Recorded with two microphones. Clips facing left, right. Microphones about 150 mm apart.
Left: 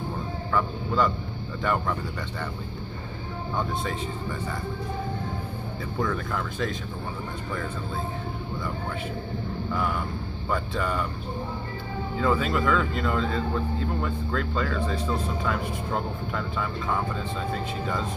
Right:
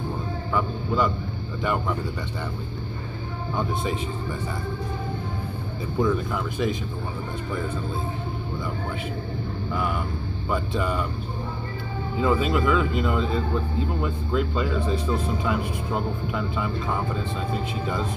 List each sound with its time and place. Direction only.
0.5 s a sound: 10° right (ahead or behind)
1.6 s speech: 10° right (ahead or behind)
3.5 s speech: 15° right (ahead or behind)
5.9 s speech: 15° right (ahead or behind)
10.5 s speech: 15° right (ahead or behind)
12.2 s speech: 15° right (ahead or behind)